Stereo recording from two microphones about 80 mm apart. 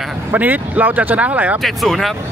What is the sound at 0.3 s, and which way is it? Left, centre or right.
Speech, right.